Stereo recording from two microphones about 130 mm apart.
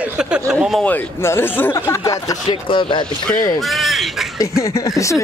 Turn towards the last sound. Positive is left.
turn(degrees=25)  # may be behind; listen again after turning